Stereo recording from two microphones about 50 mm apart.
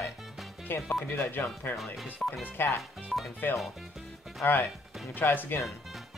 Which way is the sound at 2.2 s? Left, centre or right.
Centre.